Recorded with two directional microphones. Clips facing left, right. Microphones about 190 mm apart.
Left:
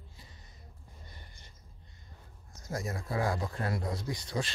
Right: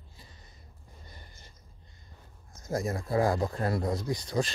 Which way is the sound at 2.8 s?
35° right (ahead or behind).